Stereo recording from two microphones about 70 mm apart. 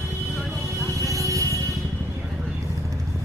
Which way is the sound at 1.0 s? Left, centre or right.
Right.